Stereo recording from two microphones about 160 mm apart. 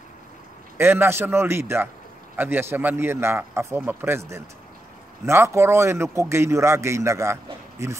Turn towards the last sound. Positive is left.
turn(degrees=-20)  # may be behind; listen again after turning